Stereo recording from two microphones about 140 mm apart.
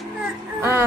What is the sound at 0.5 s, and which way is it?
Music, 20° right (ahead or behind).